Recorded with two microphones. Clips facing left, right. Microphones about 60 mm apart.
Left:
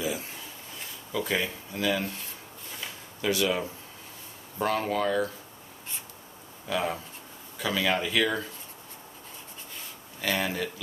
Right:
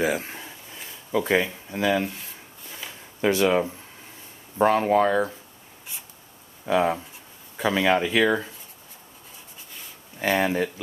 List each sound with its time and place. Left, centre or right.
0.2 s a sound: right
1.1 s speech: right
3.2 s speech: right
6.6 s speech: right
10.1 s speech: right